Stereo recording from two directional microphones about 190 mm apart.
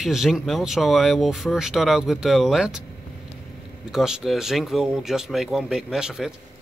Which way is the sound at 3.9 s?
Centre (ahead or behind).